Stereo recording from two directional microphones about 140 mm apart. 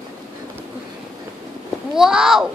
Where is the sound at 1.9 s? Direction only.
5° right (ahead or behind).